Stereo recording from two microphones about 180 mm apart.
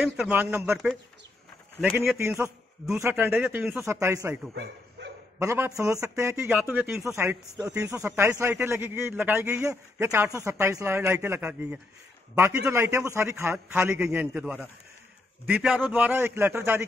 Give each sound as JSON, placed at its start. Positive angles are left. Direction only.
{"t": 0.0, "sound": "speech", "side_deg": -5}
{"t": 1.8, "sound": "speech", "side_deg": -5}
{"t": 2.1, "sound": "speech", "side_deg": -15}
{"t": 5.4, "sound": "speech", "side_deg": -15}